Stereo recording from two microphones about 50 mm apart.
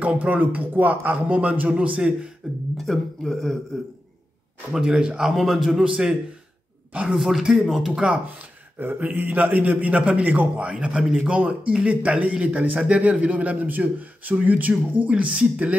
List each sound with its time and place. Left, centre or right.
0.0 s speech: right
2.4 s beatboxing: centre
2.8 s a man's voice: centre
4.7 s speech: centre
5.3 s a man's voice: centre; by 7.2 s right
7.2 s speech: centre
8.7 s speech: right